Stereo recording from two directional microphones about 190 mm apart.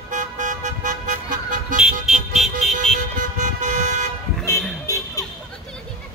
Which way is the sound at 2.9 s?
40° right (ahead or behind).